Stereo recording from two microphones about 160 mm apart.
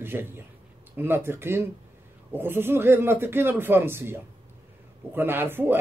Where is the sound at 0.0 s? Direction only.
15° right (ahead or behind).